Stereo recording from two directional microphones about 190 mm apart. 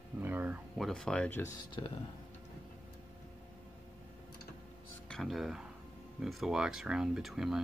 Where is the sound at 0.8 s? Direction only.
Centre (ahead or behind).